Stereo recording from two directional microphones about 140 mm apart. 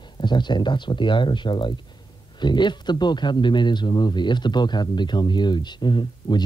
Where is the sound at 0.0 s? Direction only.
30° left (ahead or behind).